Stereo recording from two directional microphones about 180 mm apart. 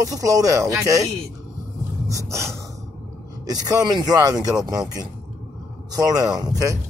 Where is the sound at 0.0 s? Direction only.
20° right (ahead or behind).